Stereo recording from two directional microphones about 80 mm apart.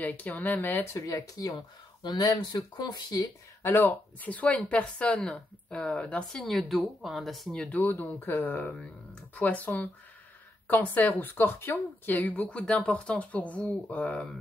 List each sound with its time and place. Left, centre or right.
0.0 s a woman's voice: left
0.9 s speech: left
3.6 s speech: left
6.5 s speech: centre
7.5 s speech: centre
7.8 s a woman's voice: left